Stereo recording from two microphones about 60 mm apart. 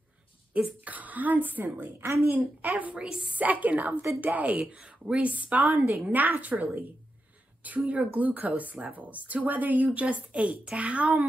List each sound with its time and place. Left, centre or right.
0.5 s speech: right